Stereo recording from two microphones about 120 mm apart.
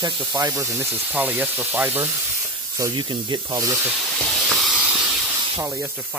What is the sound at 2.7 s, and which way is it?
Speech, 30° right (ahead or behind).